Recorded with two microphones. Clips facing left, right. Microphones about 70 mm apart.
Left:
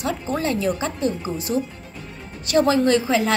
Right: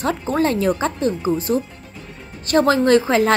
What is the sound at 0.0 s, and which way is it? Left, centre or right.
A woman's voice, right.